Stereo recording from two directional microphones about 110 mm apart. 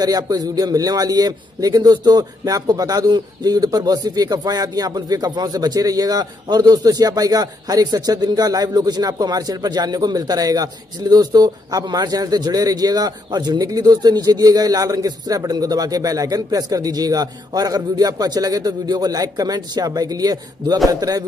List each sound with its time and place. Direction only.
0.0 s a man's voice: 35° right (ahead or behind)